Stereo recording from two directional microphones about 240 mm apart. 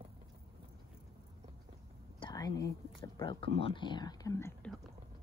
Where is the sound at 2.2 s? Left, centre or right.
Centre.